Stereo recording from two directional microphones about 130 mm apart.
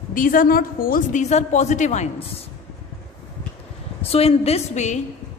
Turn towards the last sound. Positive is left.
turn(degrees=65)  # may be behind; listen again after turning